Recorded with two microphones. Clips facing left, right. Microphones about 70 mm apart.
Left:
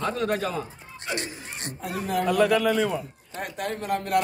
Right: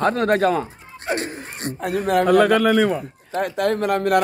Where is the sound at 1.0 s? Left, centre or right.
Right.